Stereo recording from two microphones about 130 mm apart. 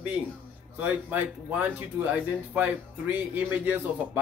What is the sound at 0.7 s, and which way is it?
A man's voice, 15° right (ahead or behind).